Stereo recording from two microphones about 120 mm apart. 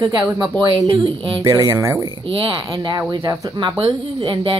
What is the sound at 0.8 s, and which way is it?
Speech, 50° right (ahead or behind).